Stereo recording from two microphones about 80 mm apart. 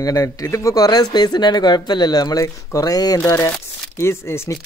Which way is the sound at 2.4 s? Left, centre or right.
Left.